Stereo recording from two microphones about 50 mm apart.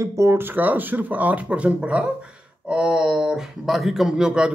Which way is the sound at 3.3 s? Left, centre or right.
Centre.